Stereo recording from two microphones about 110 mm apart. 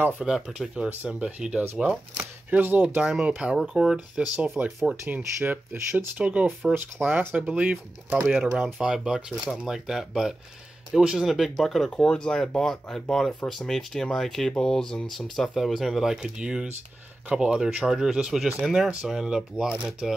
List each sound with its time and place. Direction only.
0.2 s speech: 5° right (ahead or behind)
8.6 s speech: 5° right (ahead or behind)